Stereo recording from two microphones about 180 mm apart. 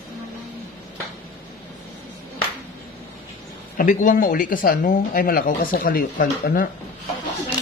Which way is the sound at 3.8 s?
45° left (ahead or behind).